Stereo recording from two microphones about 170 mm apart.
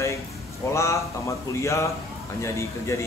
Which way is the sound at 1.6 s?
15° left (ahead or behind).